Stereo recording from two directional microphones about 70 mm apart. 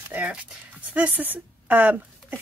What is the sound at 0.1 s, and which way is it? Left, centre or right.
Speech, centre.